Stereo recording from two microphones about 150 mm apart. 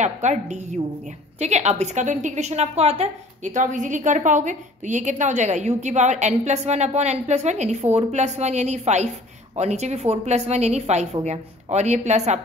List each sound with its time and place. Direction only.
0.0 s a woman's voice: 50° right (ahead or behind)